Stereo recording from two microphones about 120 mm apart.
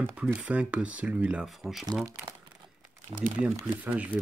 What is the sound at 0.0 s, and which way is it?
Speech, 15° right (ahead or behind).